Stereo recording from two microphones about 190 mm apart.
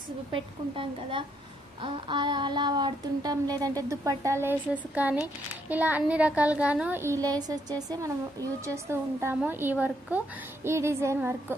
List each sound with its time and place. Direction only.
0.3 s a woman's voice: 25° right (ahead or behind)
1.8 s child singing: 25° right (ahead or behind)
8.6 s child singing: 15° right (ahead or behind)